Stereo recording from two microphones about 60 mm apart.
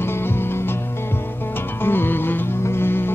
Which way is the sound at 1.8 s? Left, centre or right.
Left.